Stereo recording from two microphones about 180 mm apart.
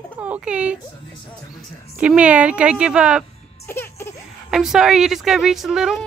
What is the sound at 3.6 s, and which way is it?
Music, 15° left (ahead or behind).